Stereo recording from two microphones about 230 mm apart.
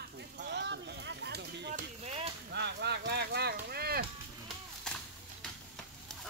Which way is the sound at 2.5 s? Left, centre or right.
Right.